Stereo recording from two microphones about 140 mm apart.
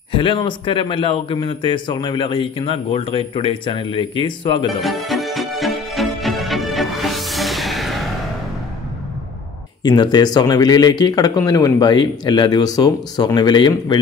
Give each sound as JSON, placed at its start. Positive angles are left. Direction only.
{"t": 0.1, "sound": "a man's voice", "side_deg": 35}
{"t": 4.7, "sound": "music", "side_deg": 0}
{"t": 9.8, "sound": "speech", "side_deg": 30}